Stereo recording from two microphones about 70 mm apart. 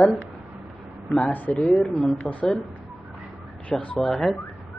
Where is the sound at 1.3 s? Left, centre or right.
Left; by 2.1 s centre.